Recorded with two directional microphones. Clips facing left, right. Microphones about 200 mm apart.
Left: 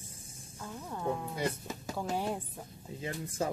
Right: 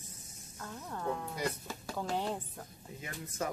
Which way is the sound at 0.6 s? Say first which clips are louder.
Left 2 dB; 10° left (ahead or behind).